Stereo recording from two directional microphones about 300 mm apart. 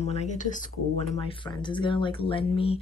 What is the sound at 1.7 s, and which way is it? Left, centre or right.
Speech, centre.